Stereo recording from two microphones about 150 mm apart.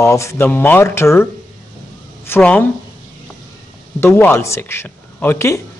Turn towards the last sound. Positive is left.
turn(degrees=15)  # may be behind; listen again after turning